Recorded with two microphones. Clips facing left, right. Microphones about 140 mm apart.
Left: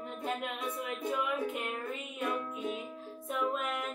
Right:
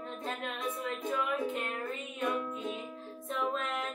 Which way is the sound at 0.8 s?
10° left (ahead or behind).